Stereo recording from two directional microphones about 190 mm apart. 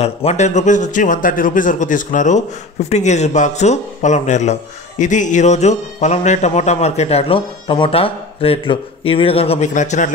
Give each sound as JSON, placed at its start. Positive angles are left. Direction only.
{"t": 0.0, "sound": "a man's voice", "side_deg": 35}